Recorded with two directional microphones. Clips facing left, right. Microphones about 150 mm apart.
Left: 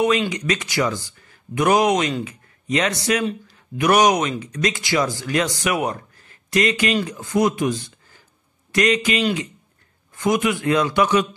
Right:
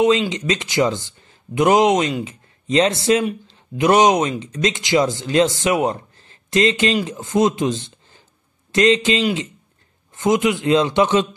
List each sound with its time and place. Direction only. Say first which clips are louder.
0.0 s speech: right 3 dB; 25° right (ahead or behind)